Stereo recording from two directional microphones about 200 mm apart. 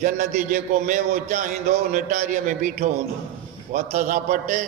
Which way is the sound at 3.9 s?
40° right (ahead or behind).